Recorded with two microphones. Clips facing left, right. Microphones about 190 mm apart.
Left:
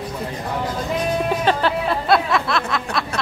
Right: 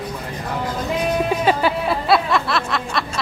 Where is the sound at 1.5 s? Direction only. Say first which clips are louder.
Even; 10° right (ahead or behind).